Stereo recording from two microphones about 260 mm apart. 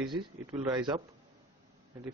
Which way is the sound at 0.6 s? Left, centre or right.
Centre.